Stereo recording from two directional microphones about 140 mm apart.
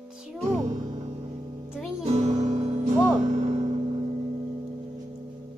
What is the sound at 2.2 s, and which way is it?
Music, 65° right (ahead or behind).